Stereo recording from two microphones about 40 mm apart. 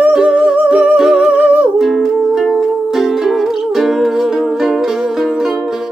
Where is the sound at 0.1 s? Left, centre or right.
Right.